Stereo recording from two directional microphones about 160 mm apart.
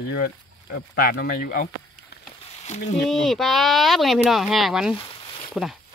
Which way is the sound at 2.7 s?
45° left (ahead or behind).